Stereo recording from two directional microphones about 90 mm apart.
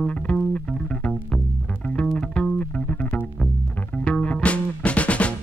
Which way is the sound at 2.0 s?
10° left (ahead or behind).